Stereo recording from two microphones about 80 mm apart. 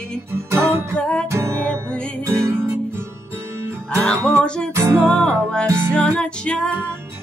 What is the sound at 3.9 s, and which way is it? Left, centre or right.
Music, centre.